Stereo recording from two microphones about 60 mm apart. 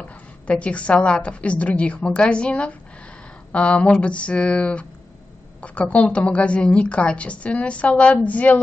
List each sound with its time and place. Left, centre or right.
0.0 s a woman's voice: left